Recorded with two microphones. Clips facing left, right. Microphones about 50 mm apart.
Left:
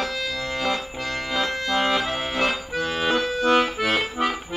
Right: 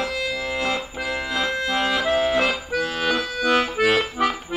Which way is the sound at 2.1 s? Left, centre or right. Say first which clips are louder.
Right 4 dB; centre.